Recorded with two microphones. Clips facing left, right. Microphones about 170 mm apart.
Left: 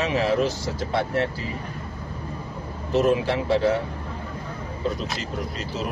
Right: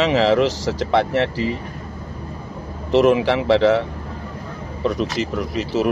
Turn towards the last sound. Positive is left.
turn(degrees=-90)